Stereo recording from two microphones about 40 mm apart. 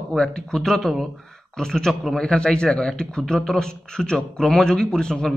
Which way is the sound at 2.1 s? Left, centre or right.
Left.